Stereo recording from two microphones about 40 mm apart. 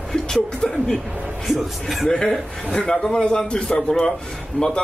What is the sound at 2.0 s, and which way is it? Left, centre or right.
A man's voice, centre.